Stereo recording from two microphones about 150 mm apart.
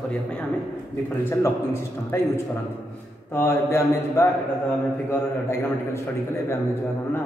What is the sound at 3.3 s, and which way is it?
Speech, 20° left (ahead or behind).